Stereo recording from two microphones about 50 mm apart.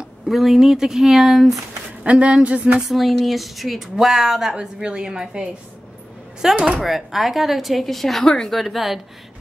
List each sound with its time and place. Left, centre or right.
0.3 s speech: centre
2.0 s speech: right
2.9 s a woman's voice: centre
6.5 s speech: right
6.8 s speech: centre
8.5 s speech: centre